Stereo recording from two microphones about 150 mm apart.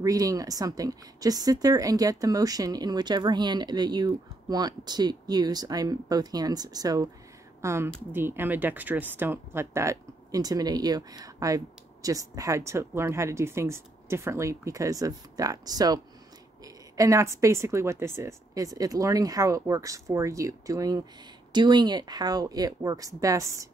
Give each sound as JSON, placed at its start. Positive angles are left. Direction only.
{"t": 0.0, "sound": "speech", "side_deg": -25}